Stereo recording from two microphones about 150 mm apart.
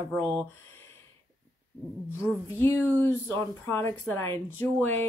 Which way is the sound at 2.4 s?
15° left (ahead or behind).